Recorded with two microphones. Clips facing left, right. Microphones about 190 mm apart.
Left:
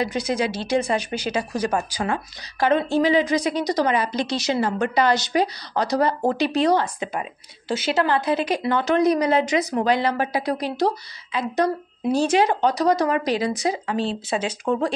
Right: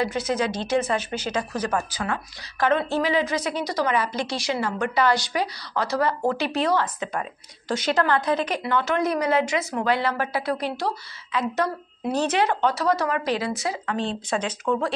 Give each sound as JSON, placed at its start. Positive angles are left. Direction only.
{"t": 0.0, "sound": "speech", "side_deg": 15}
{"t": 7.6, "sound": "a woman's voice", "side_deg": 5}